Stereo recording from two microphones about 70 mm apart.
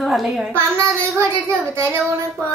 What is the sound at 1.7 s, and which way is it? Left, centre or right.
Speech, right.